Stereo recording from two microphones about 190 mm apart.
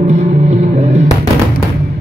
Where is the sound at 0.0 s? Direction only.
35° right (ahead or behind).